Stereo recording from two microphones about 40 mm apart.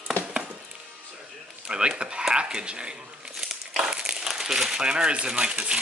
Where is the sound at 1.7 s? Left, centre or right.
Right.